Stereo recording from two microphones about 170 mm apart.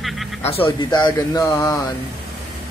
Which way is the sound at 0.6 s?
30° left (ahead or behind).